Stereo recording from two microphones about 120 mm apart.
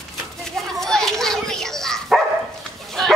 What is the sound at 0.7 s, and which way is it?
Bow-wow, 5° left (ahead or behind).